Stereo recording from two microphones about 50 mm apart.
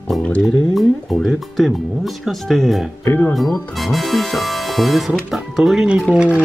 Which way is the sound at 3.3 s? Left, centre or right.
Centre.